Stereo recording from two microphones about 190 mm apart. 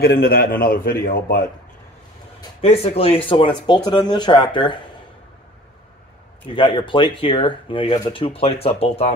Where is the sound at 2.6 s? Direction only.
30° left (ahead or behind).